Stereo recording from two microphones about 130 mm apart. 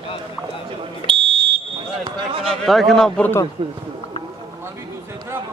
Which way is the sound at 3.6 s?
40° right (ahead or behind).